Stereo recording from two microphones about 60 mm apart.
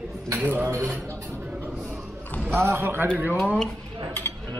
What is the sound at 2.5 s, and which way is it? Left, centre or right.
Speech, right.